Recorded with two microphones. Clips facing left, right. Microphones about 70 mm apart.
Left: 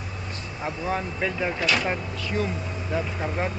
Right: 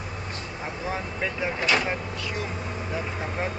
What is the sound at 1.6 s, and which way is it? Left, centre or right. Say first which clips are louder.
Speech: right 3 dB; right.